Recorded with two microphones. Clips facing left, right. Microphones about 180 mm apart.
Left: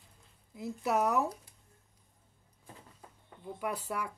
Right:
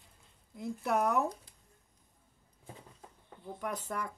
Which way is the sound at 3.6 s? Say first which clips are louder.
Left 2 dB; 10° left (ahead or behind).